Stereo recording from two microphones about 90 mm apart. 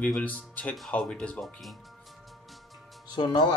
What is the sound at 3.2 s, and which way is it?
Speech, 50° left (ahead or behind).